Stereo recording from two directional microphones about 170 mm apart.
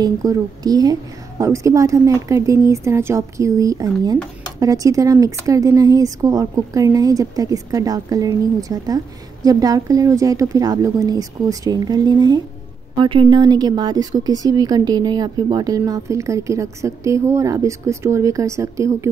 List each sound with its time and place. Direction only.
0.0 s a woman's voice: 20° right (ahead or behind)